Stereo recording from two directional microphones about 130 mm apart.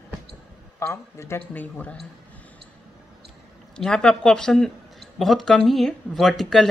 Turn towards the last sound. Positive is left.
turn(degrees=0)  # may be behind; listen again after turning